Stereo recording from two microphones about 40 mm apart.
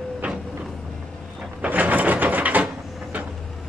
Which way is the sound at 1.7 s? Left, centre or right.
Right.